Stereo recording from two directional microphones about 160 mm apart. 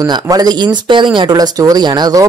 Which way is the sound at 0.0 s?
25° right (ahead or behind).